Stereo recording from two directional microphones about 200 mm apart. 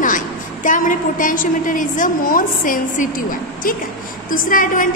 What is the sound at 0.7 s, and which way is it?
A woman's voice, 40° left (ahead or behind).